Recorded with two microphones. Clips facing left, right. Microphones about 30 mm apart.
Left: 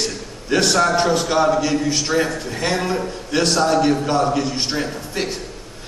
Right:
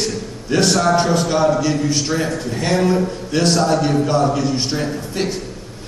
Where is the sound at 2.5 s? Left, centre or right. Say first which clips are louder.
Right 4 dB; centre.